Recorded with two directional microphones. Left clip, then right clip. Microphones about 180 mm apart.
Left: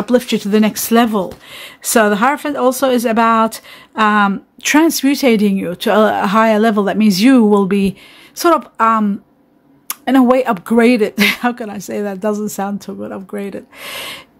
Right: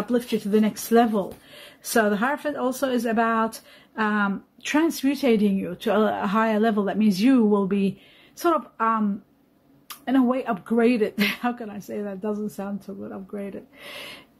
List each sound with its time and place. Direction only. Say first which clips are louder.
0.0 s speech: left 10 dB; 50° left (ahead or behind)